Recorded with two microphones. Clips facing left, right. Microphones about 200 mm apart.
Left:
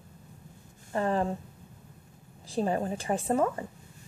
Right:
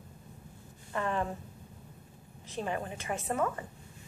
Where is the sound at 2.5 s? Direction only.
35° left (ahead or behind).